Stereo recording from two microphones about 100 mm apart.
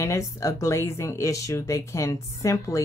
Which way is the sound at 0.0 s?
35° left (ahead or behind).